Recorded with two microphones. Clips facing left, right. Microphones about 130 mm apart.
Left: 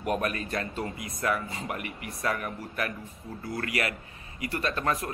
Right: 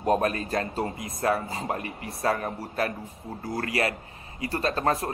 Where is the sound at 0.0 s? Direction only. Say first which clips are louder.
Right 5 dB; 30° right (ahead or behind).